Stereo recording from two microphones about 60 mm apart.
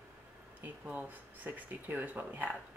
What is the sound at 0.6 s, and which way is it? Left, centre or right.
Speech, right.